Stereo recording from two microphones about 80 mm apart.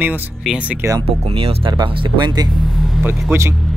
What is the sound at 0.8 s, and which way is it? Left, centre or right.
Speech, right.